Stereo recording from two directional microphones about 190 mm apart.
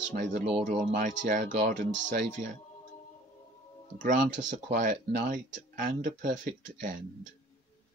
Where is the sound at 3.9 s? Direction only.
40° right (ahead or behind).